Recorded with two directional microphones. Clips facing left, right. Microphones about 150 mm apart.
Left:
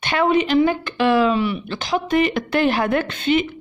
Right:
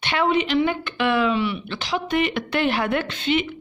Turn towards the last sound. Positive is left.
turn(degrees=45)  # may be behind; listen again after turning